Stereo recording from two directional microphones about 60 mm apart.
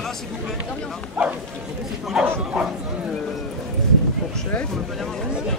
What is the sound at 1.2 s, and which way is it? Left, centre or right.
Speech, centre.